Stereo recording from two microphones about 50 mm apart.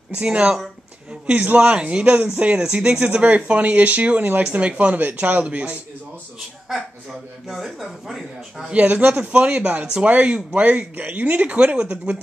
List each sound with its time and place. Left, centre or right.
0.2 s speech: right
4.9 s speech: right
7.4 s speech: centre
8.7 s speech: right